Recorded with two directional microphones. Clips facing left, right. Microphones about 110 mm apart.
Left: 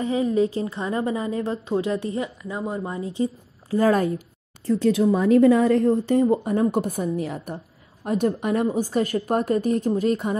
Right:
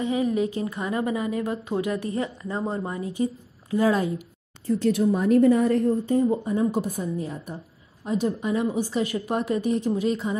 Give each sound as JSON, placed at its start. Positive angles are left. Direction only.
{"t": 0.0, "sound": "a woman's voice", "side_deg": 30}
{"t": 2.9, "sound": "a woman's voice", "side_deg": 25}
{"t": 3.7, "sound": "speech", "side_deg": 45}
{"t": 4.6, "sound": "speech", "side_deg": 90}
{"t": 6.3, "sound": "a woman's voice", "side_deg": 65}
{"t": 8.0, "sound": "a woman's voice", "side_deg": 55}
{"t": 8.7, "sound": "speech", "side_deg": 45}